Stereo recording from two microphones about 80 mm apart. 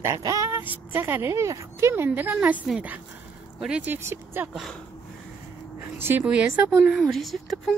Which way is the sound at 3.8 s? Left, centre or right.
Right.